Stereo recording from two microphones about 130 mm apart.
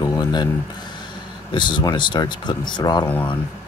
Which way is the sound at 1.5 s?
35° left (ahead or behind).